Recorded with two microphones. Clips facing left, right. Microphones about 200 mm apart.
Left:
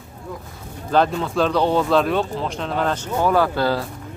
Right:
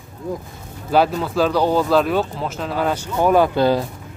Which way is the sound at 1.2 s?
5° right (ahead or behind).